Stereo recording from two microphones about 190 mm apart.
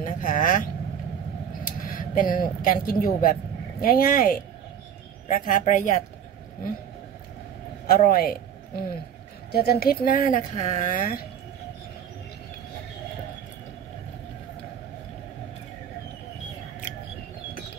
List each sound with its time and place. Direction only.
0.0 s speech: 45° left (ahead or behind)
1.8 s a woman's voice: 45° left (ahead or behind)
7.8 s a man's voice: 50° left (ahead or behind)